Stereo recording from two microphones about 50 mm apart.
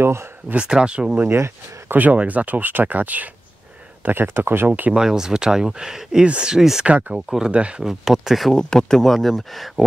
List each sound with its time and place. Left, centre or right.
0.6 s speech: centre
1.9 s speech: right
4.0 s speech: right
4.9 s speech: centre
6.5 s speech: centre
6.9 s speech: right
7.2 s speech: centre
8.5 s speech: centre